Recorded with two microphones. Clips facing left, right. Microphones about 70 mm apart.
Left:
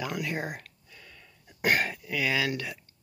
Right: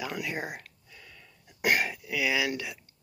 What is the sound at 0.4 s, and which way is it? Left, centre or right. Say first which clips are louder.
Speech: left 1 dB; centre.